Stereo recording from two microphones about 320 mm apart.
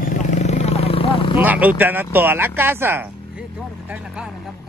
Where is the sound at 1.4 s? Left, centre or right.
Centre.